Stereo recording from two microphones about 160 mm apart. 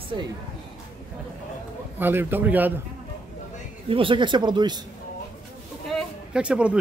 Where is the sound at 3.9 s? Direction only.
35° right (ahead or behind).